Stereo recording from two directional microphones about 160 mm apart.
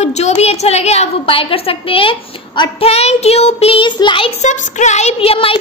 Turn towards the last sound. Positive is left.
turn(degrees=35)  # may be behind; listen again after turning